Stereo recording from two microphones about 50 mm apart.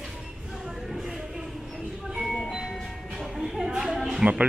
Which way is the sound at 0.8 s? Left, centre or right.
Centre.